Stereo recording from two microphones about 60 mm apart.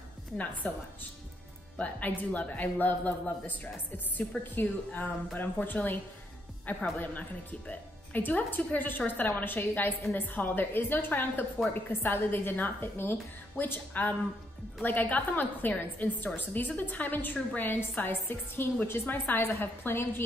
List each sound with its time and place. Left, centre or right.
0.6 s speech: left